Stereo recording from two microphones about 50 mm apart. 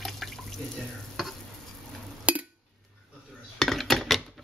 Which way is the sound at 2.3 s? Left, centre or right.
Right.